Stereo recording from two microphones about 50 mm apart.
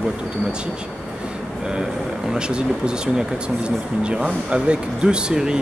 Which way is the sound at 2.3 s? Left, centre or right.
Centre.